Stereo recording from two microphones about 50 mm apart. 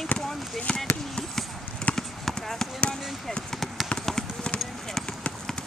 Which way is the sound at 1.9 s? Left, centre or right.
Centre.